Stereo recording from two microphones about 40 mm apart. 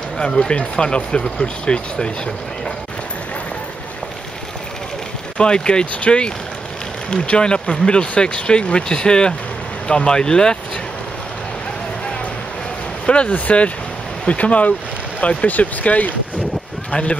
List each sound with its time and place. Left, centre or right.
0.2 s speech: centre
5.4 s speech: left
13.0 s speech: left